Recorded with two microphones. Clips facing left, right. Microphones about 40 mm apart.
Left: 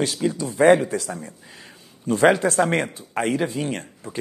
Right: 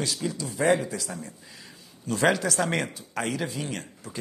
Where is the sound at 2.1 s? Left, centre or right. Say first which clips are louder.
Left 6 dB; left.